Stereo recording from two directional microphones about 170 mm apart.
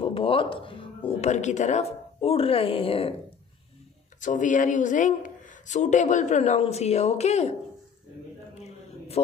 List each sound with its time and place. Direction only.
0.0 s speech: 30° left (ahead or behind)
4.2 s speech: 50° left (ahead or behind)
8.6 s a sound: 40° left (ahead or behind)